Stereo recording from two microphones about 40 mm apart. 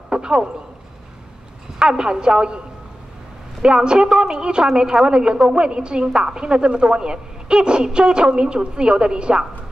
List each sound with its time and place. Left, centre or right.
0.1 s a sound: right
1.8 s a woman's voice: right
3.6 s a woman's voice: right